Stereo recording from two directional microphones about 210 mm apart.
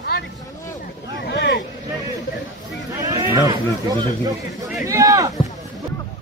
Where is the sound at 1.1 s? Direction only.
55° left (ahead or behind).